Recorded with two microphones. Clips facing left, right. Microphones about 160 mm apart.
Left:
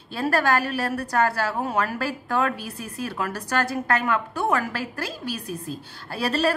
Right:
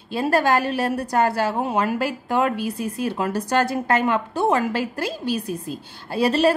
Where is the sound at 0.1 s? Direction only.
20° right (ahead or behind).